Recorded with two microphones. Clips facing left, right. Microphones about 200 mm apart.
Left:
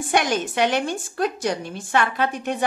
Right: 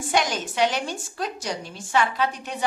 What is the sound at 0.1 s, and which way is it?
Speech, 55° left (ahead or behind).